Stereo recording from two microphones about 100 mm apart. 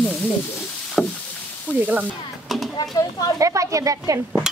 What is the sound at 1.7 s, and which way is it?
Speech, 15° left (ahead or behind).